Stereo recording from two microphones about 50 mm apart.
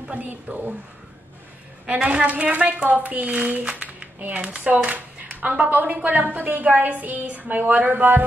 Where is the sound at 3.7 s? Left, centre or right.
Right.